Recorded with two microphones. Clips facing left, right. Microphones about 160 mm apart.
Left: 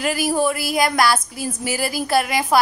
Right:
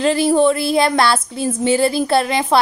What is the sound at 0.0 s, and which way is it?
Speech, 25° right (ahead or behind).